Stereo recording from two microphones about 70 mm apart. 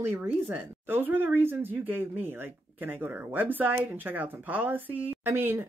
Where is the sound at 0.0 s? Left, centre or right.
Right.